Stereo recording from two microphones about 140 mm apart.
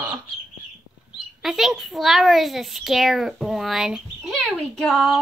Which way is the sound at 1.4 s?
Centre (ahead or behind).